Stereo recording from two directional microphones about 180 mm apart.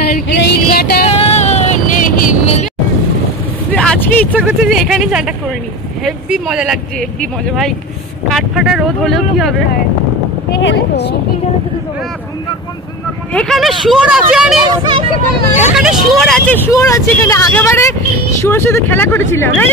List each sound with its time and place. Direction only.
0.4 s music: 60° left (ahead or behind)
1.0 s vehicle: 35° left (ahead or behind)
3.7 s vehicle: 5° left (ahead or behind)
4.3 s speech: 10° right (ahead or behind)
4.6 s speech: centre (ahead or behind)
8.3 s speech: centre (ahead or behind)
10.6 s speech: 70° left (ahead or behind)
13.3 s speech: 5° left (ahead or behind)
14.9 s speech: 30° right (ahead or behind)
15.7 s speech: 5° right (ahead or behind); by 19.7 s 15° left (ahead or behind)